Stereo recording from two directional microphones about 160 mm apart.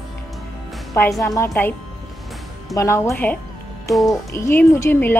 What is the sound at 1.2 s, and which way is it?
Speech, 20° left (ahead or behind).